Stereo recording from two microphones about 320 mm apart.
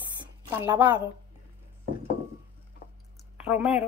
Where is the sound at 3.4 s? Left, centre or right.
Centre.